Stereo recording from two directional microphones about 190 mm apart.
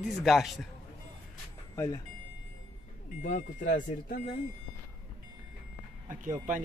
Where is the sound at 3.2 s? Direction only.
40° left (ahead or behind).